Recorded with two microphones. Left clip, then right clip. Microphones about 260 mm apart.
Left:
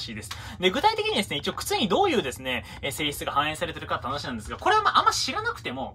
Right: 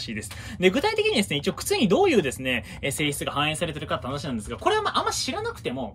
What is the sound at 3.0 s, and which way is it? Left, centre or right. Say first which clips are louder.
Speech: even; centre.